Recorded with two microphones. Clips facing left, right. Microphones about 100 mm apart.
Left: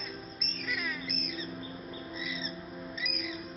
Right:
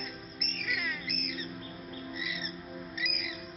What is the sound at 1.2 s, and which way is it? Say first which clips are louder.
Music: even; 35° left (ahead or behind).